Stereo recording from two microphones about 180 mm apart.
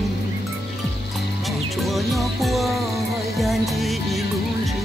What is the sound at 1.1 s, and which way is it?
Music, centre (ahead or behind).